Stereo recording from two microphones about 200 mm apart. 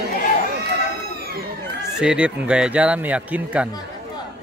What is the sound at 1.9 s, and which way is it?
Speech, 5° right (ahead or behind).